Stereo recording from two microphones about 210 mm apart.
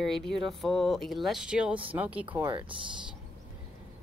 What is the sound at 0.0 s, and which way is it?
Speech, centre (ahead or behind).